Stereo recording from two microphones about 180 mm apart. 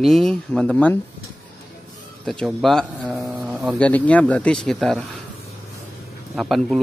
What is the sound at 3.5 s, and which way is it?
Speech, centre (ahead or behind).